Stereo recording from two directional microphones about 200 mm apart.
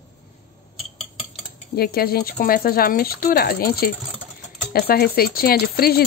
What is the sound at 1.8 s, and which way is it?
Speech, 50° left (ahead or behind).